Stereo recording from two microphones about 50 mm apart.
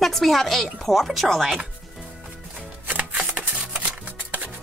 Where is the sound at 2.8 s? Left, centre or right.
Right.